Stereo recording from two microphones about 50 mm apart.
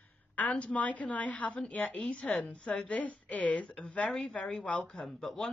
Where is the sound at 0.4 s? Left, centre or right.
Left.